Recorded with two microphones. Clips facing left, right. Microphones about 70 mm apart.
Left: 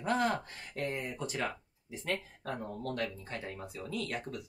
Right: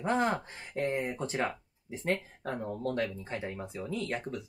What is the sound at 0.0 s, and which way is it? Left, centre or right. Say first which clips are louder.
Speech: right 2 dB; right.